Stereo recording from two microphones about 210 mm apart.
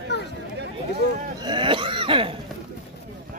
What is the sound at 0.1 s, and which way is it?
Chatter, 55° left (ahead or behind).